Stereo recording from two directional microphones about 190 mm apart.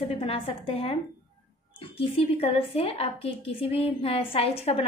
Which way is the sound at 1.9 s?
30° left (ahead or behind).